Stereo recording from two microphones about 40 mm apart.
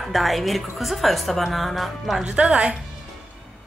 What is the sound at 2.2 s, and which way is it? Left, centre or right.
Speech, right.